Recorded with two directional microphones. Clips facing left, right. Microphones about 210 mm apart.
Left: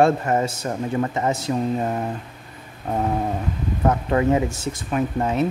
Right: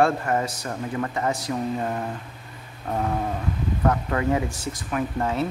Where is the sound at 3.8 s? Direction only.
25° left (ahead or behind).